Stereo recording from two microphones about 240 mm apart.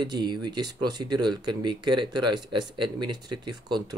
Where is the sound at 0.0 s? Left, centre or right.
Centre.